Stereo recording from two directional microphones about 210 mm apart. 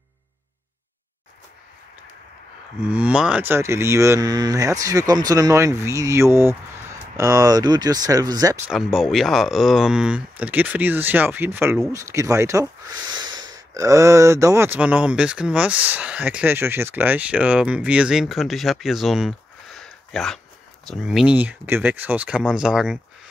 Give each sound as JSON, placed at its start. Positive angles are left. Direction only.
{"t": 2.8, "sound": "speech", "side_deg": -5}
{"t": 8.6, "sound": "speech", "side_deg": 0}
{"t": 19.8, "sound": "a sound", "side_deg": 0}
{"t": 20.8, "sound": "speech", "side_deg": 0}